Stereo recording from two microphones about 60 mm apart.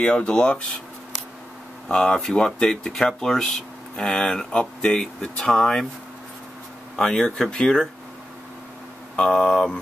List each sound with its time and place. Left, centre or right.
0.0 s speech: centre
1.9 s speech: centre
7.0 s speech: centre
9.1 s speech: centre